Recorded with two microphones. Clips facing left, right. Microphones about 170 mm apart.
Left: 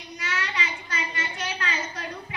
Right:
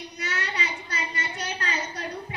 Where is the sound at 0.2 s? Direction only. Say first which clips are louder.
Even; 40° right (ahead or behind).